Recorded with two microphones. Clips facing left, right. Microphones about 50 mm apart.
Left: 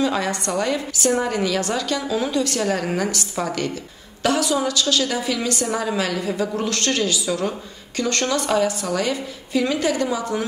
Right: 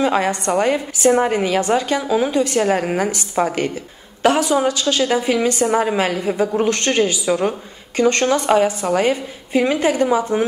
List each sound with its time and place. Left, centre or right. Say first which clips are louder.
0.0 s a woman's voice: right 4 dB; right